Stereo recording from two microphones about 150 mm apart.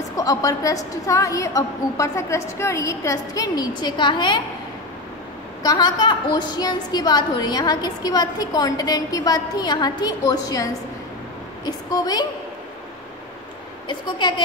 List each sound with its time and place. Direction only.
0.1 s a woman's voice: 20° left (ahead or behind)
5.6 s a woman's voice: 25° left (ahead or behind)
13.8 s a woman's voice: 30° left (ahead or behind)